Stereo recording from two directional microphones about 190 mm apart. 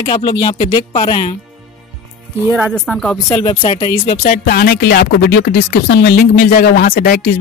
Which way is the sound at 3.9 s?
50° left (ahead or behind).